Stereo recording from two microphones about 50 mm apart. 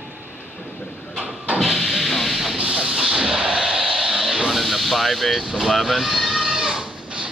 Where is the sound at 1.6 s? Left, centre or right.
Centre.